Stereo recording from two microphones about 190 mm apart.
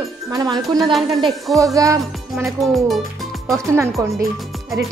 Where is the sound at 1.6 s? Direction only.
15° right (ahead or behind).